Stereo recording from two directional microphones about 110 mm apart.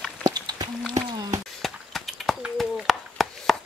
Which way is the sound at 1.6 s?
Centre (ahead or behind).